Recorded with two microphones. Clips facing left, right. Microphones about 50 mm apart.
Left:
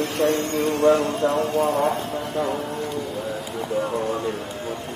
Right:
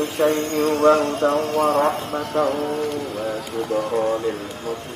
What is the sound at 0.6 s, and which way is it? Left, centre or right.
Music, right.